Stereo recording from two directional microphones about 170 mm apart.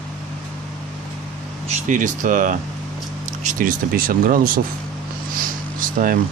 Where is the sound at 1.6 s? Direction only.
50° right (ahead or behind).